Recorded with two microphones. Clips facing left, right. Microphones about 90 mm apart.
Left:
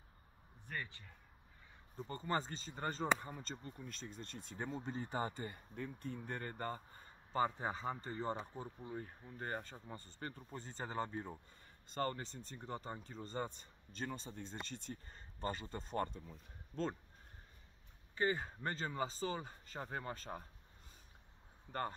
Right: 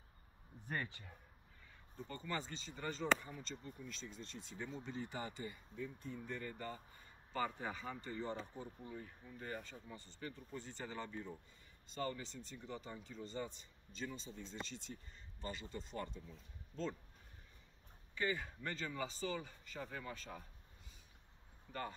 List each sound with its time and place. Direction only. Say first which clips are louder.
0.7 s speech: right 2 dB; 15° right (ahead or behind)
2.0 s a man's voice: left 5 dB; 35° left (ahead or behind)
7.3 s a man's voice: left 4 dB; 35° left (ahead or behind)
18.1 s a man's voice: left 3 dB; 35° left (ahead or behind)
21.7 s a man's voice: left 4 dB; 40° left (ahead or behind)